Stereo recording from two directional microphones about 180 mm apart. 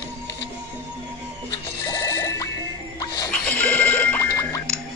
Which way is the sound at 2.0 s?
15° left (ahead or behind).